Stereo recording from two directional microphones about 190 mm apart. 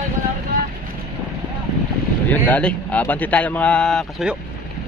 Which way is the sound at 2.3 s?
5° left (ahead or behind).